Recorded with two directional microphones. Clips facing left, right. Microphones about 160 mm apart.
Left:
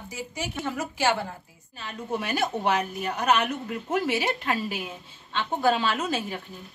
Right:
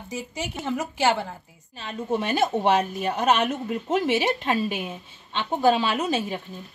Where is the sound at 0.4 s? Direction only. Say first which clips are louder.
Right 2 dB; 20° right (ahead or behind).